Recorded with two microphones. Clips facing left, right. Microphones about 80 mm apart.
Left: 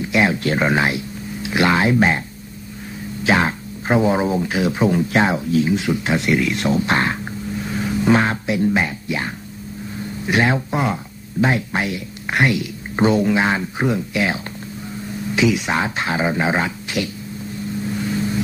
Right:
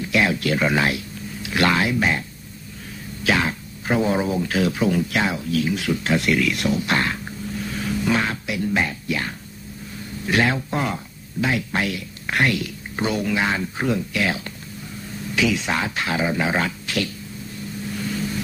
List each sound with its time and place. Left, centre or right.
0.0 s speech: left
3.3 s speech: left
8.1 s speech: left